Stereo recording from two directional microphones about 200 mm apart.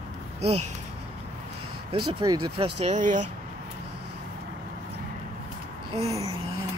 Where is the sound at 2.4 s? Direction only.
30° right (ahead or behind).